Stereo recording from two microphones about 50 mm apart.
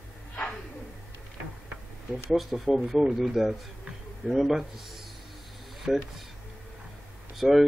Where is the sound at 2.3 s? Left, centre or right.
Centre.